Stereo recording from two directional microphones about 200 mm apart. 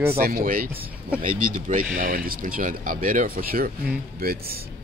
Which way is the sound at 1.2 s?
40° right (ahead or behind).